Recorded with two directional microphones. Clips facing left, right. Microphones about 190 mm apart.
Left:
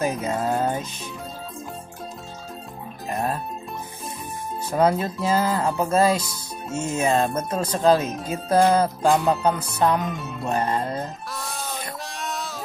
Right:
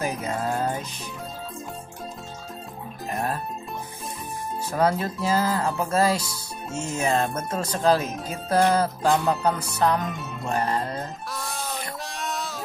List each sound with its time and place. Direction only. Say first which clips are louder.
0.0 s music: left 3 dB; 25° left (ahead or behind)
4.7 s speech: left 3 dB; 20° left (ahead or behind)
9.1 s speech: left 1 dB; centre (ahead or behind)
9.8 s speech: left 1 dB; 20° left (ahead or behind)
10.0 s speech: left 2 dB; centre (ahead or behind)
10.5 s speech: left 2 dB; 20° left (ahead or behind)
11.3 s a sound: right 1 dB; centre (ahead or behind)